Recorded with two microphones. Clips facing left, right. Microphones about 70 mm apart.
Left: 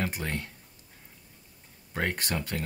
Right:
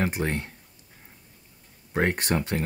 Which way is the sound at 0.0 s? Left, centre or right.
Right.